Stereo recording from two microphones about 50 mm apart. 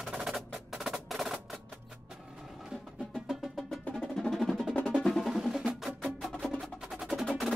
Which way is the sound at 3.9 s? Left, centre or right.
Centre.